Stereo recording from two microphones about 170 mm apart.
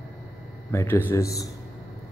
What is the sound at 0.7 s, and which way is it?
Speech, 15° left (ahead or behind).